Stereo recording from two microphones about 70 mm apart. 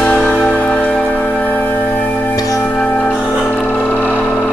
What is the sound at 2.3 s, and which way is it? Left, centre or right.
Music, left.